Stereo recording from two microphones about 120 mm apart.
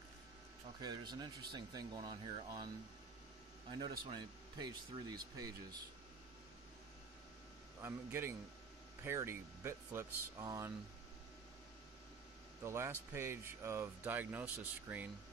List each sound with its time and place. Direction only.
0.7 s speech: 35° right (ahead or behind)
3.7 s speech: 40° right (ahead or behind)
7.8 s speech: 20° right (ahead or behind)
12.6 s speech: 20° right (ahead or behind)